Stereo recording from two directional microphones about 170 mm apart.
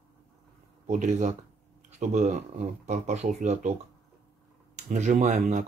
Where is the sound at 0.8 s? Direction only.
50° right (ahead or behind).